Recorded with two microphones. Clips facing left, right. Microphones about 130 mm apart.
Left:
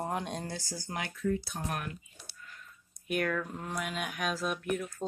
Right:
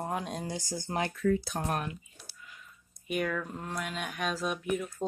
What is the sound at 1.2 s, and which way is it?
Speech, 75° right (ahead or behind).